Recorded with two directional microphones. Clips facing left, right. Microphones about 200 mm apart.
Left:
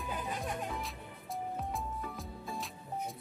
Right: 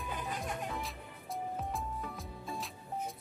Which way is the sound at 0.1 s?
Centre (ahead or behind).